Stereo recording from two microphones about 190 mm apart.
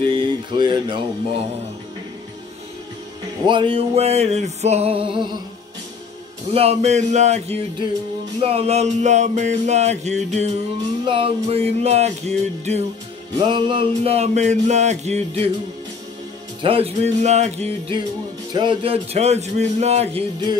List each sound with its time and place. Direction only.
0.0 s music: 25° right (ahead or behind)
3.4 s music: 25° right (ahead or behind)
6.5 s music: 30° right (ahead or behind)
16.6 s music: 30° right (ahead or behind)